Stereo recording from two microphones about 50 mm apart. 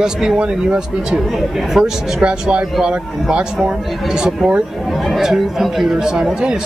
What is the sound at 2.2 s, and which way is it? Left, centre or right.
A man's voice, centre.